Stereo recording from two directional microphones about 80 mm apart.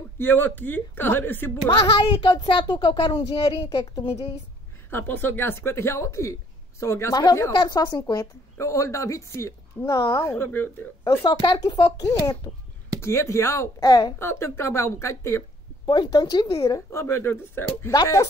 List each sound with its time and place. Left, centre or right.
0.2 s a woman's voice: left
1.9 s a child's voice: left
4.9 s speech: left
7.5 s speech: left
8.5 s speech: left
9.8 s a child's voice: left
10.1 s a woman's voice: left
11.1 s speech: left
13.0 s speech: left
13.8 s speech: left
14.1 s speech: left
15.8 s speech: left
16.5 s speech: left